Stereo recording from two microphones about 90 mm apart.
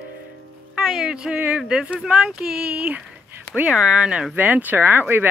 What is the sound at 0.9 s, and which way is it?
Speech, 5° right (ahead or behind).